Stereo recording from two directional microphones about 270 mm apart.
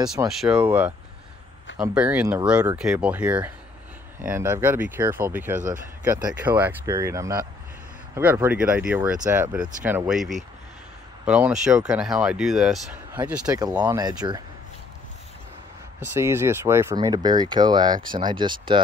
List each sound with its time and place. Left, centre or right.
0.3 s speech: centre
13.3 s speech: centre
16.1 s speech: centre